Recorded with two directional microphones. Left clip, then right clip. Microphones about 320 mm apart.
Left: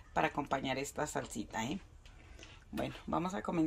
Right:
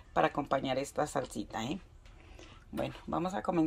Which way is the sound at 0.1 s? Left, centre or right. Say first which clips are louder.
Right 4 dB; centre.